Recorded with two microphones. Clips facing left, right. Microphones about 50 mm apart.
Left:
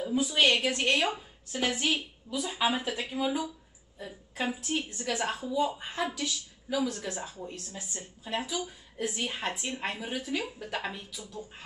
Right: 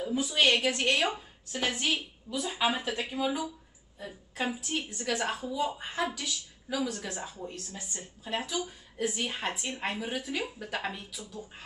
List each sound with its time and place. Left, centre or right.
0.1 s speech: centre
2.3 s speech: right
2.6 s speech: centre